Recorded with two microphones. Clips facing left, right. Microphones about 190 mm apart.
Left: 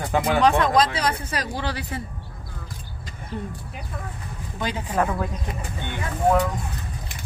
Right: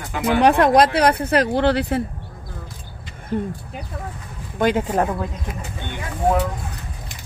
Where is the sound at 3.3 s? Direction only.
50° right (ahead or behind).